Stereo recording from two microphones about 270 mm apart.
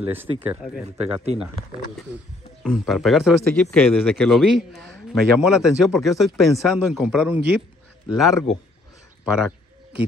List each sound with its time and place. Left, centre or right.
0.1 s speech: centre
0.8 s speech: right
2.6 s a man's voice: centre